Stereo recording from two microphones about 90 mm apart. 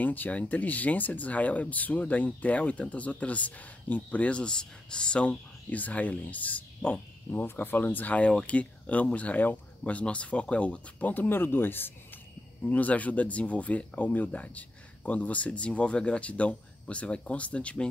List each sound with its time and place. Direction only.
0.0 s speech: 20° left (ahead or behind)